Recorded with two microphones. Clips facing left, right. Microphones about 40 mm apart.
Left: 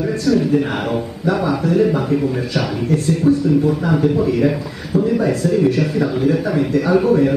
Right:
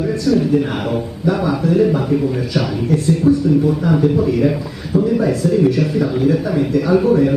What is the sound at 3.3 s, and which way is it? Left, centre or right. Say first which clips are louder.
Speech: even; centre.